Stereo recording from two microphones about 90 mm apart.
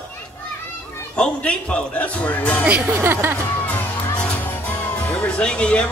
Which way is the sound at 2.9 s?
25° right (ahead or behind).